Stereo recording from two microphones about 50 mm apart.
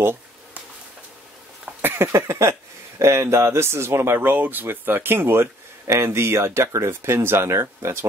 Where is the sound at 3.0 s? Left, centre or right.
Right.